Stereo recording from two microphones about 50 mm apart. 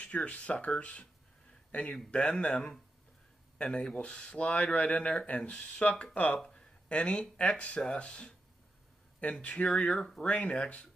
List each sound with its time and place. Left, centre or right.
0.0 s speech: left
9.9 s speech: centre
10.2 s speech: left